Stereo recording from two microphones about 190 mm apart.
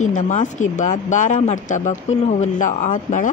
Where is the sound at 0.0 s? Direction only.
40° left (ahead or behind).